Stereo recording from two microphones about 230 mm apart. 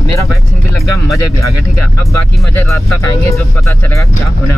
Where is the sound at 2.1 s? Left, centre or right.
Centre.